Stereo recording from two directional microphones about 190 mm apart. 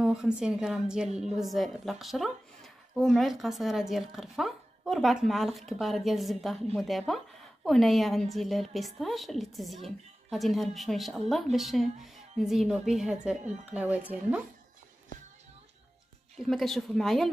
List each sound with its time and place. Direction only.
0.0 s a sound: 5° right (ahead or behind)
0.4 s a woman's voice: 5° right (ahead or behind)
16.4 s a woman's voice: centre (ahead or behind)